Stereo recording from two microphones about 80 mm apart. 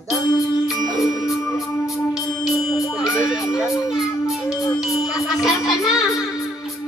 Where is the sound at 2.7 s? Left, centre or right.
Centre.